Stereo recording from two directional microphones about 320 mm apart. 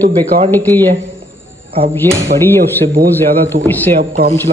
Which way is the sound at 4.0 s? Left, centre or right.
Right.